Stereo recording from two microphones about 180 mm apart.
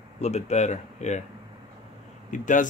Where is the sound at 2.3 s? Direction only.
45° left (ahead or behind).